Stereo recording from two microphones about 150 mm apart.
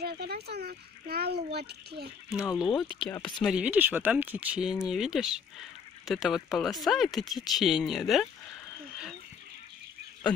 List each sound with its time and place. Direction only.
0.0 s speech: 90° right
2.5 s speech: 5° right (ahead or behind)
3.4 s speech: 10° right (ahead or behind)